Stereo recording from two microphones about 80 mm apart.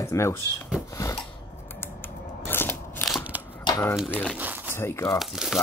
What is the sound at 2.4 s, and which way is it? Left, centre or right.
Scissors, left.